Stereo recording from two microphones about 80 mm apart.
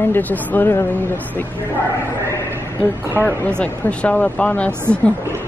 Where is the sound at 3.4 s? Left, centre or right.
Centre.